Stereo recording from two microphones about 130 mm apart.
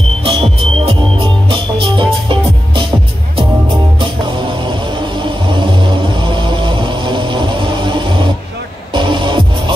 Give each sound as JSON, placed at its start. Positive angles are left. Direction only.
{"t": 0.2, "sound": "music", "side_deg": -45}
{"t": 4.6, "sound": "vehicle", "side_deg": -40}
{"t": 8.9, "sound": "music", "side_deg": -35}